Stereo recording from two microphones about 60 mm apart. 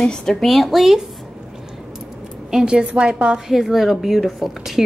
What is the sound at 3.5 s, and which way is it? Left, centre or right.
A woman's voice, centre.